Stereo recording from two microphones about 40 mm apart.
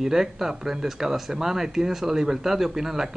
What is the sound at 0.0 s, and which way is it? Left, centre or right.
Speech, centre.